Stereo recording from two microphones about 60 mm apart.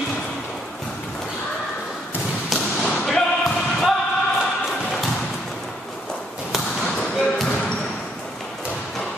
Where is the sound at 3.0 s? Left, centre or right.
Centre.